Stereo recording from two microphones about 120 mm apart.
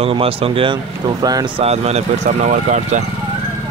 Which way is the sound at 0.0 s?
50° right (ahead or behind).